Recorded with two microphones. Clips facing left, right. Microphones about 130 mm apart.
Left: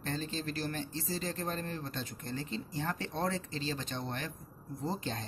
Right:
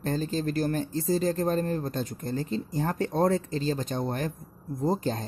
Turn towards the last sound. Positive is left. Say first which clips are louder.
# right 10 dB
turn(degrees=-40)  # may be behind; listen again after turning